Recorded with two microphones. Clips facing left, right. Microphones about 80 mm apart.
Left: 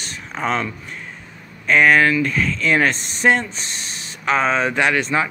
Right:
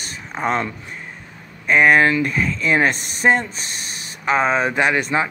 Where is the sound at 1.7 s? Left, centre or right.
Centre.